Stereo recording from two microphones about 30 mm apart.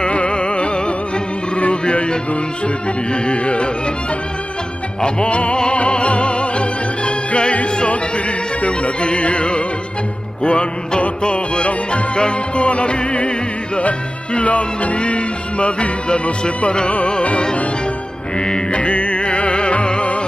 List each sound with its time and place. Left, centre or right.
0.0 s music: left
5.0 s music: left
18.7 s music: left